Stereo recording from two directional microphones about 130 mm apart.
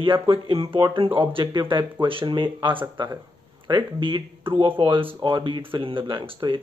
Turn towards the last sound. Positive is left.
turn(degrees=-40)  # may be behind; listen again after turning